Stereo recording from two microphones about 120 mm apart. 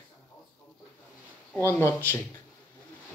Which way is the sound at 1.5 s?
15° left (ahead or behind).